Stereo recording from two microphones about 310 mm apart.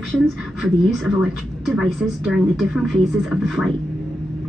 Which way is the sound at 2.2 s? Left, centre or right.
Centre.